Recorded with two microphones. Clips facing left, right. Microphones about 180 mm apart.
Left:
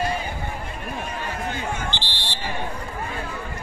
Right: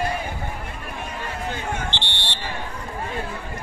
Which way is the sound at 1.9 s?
70° right (ahead or behind).